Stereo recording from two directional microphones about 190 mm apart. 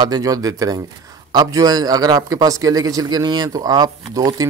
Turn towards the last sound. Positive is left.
turn(degrees=-20)  # may be behind; listen again after turning